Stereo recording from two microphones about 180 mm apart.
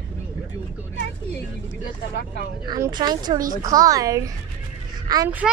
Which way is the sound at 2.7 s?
25° right (ahead or behind).